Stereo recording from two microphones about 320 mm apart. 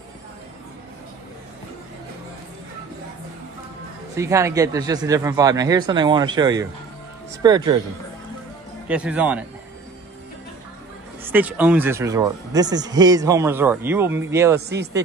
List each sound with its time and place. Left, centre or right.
4.2 s speech: centre
8.8 s speech: centre
11.2 s speech: centre
14.7 s speech: right